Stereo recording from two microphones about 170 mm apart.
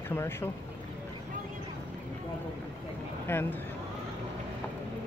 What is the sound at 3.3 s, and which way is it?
Speech, 10° left (ahead or behind).